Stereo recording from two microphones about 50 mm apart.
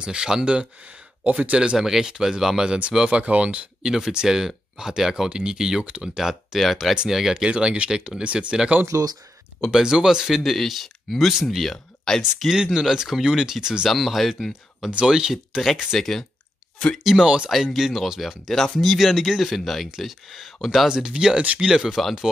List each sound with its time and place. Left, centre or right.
0.0 s speech: centre
1.2 s speech: right; by 2.8 s centre
3.1 s speech: right
3.8 s speech: centre
7.9 s speech: centre
12.2 s speech: centre
13.8 s speech: centre
15.0 s speech: centre
15.6 s speech: centre
17.0 s speech: centre
18.5 s speech: centre
20.9 s speech: centre